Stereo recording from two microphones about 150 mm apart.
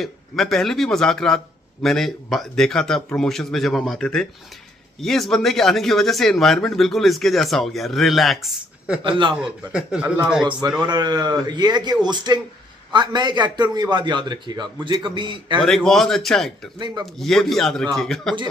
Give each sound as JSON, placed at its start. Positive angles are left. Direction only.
{"t": 0.0, "sound": "speech", "side_deg": 0}
{"t": 10.8, "sound": "a man's voice", "side_deg": -30}
{"t": 15.6, "sound": "speech", "side_deg": 0}
{"t": 16.7, "sound": "speech", "side_deg": -30}
{"t": 17.0, "sound": "speech", "side_deg": 0}